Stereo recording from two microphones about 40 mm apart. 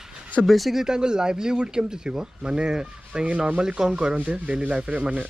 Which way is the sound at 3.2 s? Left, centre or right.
Right.